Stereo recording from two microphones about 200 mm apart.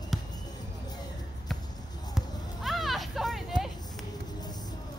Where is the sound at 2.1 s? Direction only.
Centre (ahead or behind).